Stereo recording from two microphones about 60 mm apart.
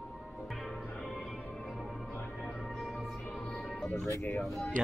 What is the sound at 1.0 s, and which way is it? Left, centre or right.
Music, centre.